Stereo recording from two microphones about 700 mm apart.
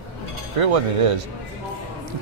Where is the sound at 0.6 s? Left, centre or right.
Right.